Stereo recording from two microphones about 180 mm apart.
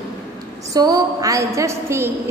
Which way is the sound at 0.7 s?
20° right (ahead or behind).